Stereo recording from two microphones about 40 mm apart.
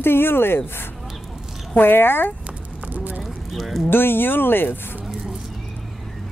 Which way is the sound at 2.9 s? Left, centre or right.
Right.